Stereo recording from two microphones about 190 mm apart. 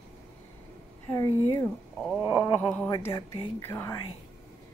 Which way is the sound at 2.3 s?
10° left (ahead or behind).